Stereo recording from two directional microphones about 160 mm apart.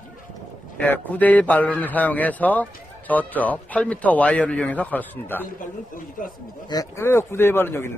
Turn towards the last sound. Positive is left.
turn(degrees=15)  # may be behind; listen again after turning